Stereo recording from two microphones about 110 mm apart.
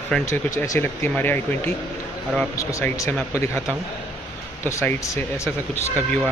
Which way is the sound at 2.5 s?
30° left (ahead or behind).